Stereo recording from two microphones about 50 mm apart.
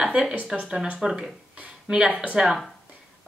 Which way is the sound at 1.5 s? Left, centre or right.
Right.